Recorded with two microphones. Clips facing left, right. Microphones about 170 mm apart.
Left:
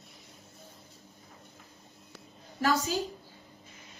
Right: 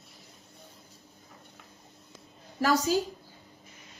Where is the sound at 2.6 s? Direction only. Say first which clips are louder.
Right 3 dB; 35° right (ahead or behind).